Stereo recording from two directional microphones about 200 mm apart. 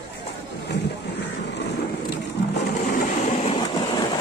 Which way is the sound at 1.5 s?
60° left (ahead or behind).